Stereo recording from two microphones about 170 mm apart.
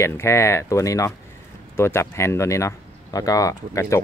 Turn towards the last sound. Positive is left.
turn(degrees=15)  # may be behind; listen again after turning